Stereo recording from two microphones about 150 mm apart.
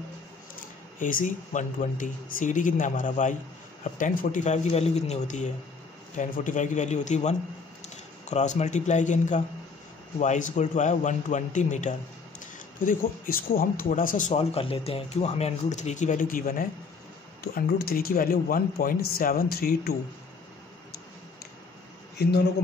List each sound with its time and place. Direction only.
0.9 s speech: 60° left (ahead or behind)
12.8 s speech: 70° left (ahead or behind)
14.3 s speech: 40° left (ahead or behind); by 16.6 s 70° left (ahead or behind)
17.4 s speech: 90° left